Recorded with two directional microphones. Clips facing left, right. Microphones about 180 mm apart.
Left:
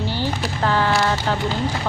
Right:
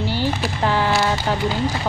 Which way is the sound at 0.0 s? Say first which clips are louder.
Right 2 dB; 15° right (ahead or behind).